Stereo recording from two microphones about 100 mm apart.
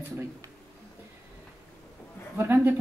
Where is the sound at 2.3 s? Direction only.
25° right (ahead or behind).